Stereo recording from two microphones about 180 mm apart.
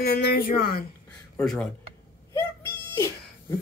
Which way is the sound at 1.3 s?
5° left (ahead or behind).